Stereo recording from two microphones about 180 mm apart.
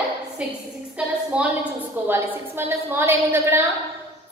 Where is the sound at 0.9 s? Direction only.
5° right (ahead or behind).